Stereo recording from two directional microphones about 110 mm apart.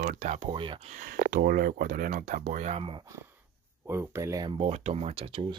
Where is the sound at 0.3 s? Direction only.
60° right (ahead or behind).